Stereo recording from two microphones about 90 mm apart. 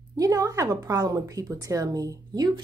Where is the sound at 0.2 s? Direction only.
40° right (ahead or behind).